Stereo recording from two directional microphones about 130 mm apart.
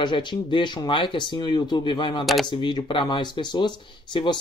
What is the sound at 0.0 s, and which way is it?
Speech, 35° left (ahead or behind).